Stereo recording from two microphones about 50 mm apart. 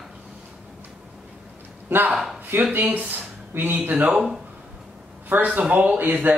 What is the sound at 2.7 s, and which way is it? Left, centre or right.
Speech, right.